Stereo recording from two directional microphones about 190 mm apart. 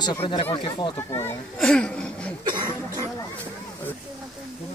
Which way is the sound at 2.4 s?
20° right (ahead or behind).